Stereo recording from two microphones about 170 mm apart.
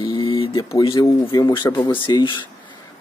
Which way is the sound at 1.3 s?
30° left (ahead or behind).